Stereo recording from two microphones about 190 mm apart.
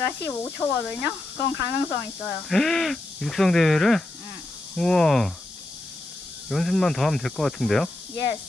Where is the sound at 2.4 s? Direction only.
Centre (ahead or behind).